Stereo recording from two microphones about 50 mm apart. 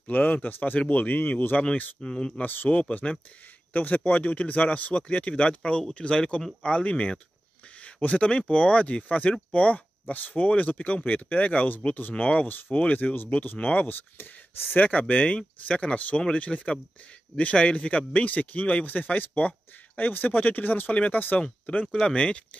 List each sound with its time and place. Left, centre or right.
0.0 s speech: left
2.0 s speech: centre
2.4 s speech: left
2.8 s a man's voice: left
14.8 s a man's voice: left